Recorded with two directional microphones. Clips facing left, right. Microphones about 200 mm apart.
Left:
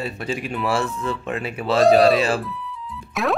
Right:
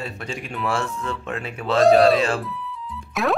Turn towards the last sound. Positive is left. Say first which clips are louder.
# even
turn(degrees=0)  # may be behind; listen again after turning